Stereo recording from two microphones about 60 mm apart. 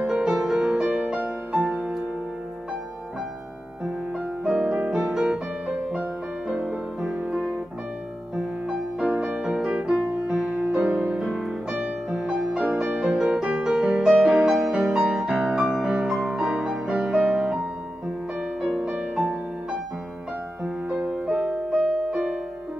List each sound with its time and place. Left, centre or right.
0.0 s music: centre
1.5 s music: centre
4.5 s music: centre
7.2 s music: right
8.4 s music: centre
9.7 s music: centre
10.6 s music: right
11.8 s music: centre
12.3 s music: right
12.5 s music: centre
13.3 s music: centre
18.8 s music: right
21.0 s music: centre